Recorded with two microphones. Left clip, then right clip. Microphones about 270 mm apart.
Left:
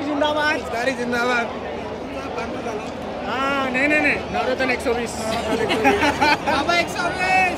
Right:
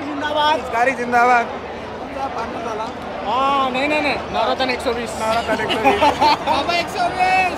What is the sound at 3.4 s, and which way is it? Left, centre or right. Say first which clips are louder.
Speech: even; centre.